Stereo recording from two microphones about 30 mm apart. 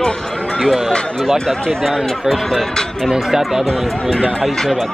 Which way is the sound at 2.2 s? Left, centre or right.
Centre.